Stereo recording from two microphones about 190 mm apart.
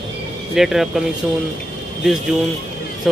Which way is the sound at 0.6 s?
Centre (ahead or behind).